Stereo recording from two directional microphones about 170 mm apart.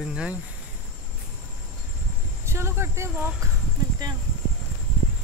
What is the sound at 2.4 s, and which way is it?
Speech, 15° right (ahead or behind).